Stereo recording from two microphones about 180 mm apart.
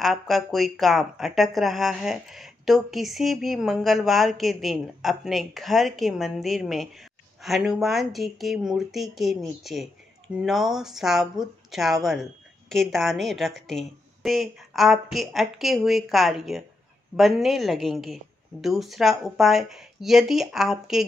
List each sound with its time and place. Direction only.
0.0 s a woman's voice: centre (ahead or behind)